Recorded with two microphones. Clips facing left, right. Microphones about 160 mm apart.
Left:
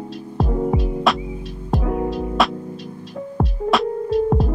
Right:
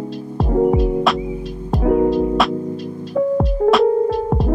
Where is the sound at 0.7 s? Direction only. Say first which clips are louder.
Right 3 dB; centre (ahead or behind).